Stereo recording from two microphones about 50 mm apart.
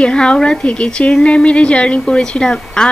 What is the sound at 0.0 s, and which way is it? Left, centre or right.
A woman's voice, centre.